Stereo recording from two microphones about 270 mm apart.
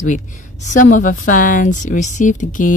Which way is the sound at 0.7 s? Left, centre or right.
Left.